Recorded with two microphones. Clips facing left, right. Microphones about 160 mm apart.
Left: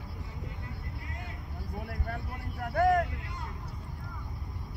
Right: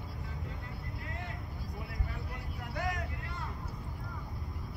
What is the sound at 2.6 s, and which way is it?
Vehicle, 50° left (ahead or behind).